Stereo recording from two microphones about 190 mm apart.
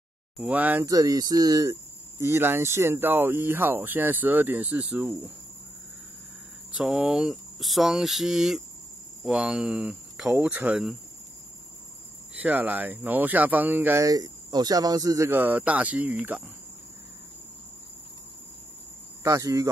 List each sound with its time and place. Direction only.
0.4 s speech: 10° right (ahead or behind)
6.8 s speech: 5° right (ahead or behind)
12.4 s speech: 10° right (ahead or behind)
19.2 s speech: 15° right (ahead or behind)